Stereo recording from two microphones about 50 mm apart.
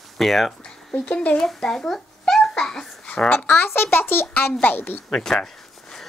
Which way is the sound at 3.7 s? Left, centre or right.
Left.